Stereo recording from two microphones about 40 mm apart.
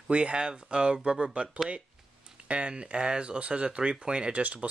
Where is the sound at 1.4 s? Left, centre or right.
Right.